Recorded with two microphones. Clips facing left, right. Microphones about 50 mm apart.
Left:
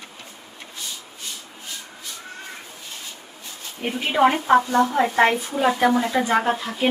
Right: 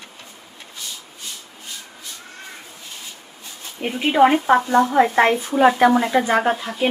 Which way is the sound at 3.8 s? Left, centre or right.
Centre.